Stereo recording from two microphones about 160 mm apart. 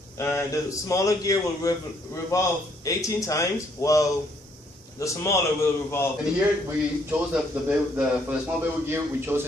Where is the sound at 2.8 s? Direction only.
20° left (ahead or behind).